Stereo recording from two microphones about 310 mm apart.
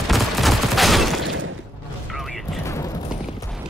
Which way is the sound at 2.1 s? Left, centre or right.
Centre.